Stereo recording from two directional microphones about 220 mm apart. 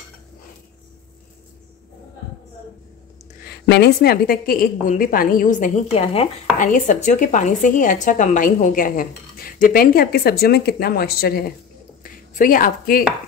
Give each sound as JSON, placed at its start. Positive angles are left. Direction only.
{"t": 3.4, "sound": "a woman's voice", "side_deg": 50}